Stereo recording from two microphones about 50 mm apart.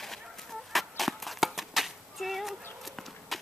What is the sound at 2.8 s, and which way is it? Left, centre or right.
Horse, centre.